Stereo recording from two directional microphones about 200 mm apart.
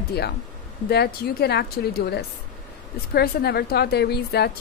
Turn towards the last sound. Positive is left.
turn(degrees=55)  # may be behind; listen again after turning